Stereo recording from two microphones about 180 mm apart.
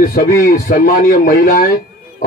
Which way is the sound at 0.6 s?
50° left (ahead or behind).